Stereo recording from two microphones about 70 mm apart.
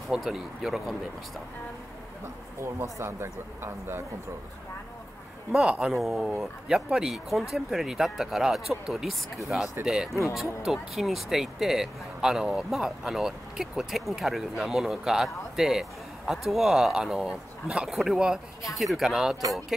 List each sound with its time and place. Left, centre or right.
0.1 s speech: centre
2.6 s speech: right
5.5 s speech: centre
5.9 s speech: centre
10.3 s speech: centre